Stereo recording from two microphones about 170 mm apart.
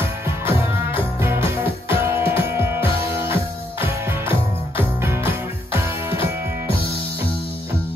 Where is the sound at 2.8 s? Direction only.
30° left (ahead or behind).